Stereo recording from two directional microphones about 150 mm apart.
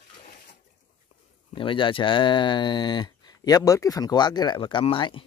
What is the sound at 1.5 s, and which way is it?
Speech, 35° left (ahead or behind).